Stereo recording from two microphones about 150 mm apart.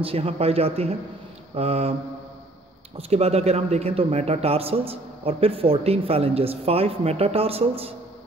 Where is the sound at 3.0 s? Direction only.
45° right (ahead or behind).